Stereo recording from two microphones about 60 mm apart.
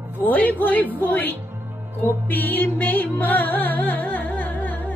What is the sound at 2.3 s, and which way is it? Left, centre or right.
Music, left.